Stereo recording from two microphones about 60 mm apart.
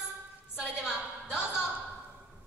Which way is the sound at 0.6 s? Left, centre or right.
Centre.